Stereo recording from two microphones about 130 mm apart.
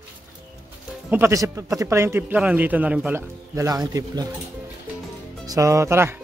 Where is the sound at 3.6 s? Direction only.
25° right (ahead or behind).